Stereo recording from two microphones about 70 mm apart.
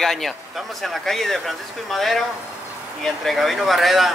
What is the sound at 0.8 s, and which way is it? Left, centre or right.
Speech, centre.